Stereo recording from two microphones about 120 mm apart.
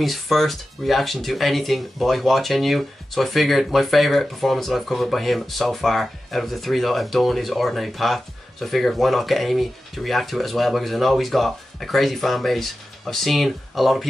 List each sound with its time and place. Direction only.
0.0 s speech: centre (ahead or behind)